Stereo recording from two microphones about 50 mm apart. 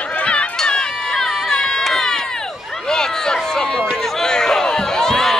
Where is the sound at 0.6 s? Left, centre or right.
Centre.